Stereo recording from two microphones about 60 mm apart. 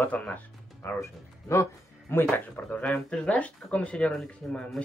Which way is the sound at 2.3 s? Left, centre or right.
Left.